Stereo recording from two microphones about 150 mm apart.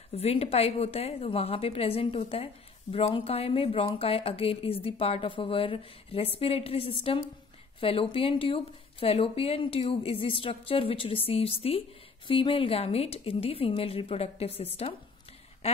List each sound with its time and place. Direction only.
0.1 s a woman's voice: 45° left (ahead or behind)